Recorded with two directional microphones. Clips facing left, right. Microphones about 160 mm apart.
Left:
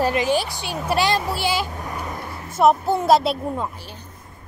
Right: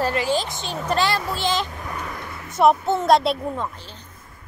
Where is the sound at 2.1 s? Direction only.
30° left (ahead or behind).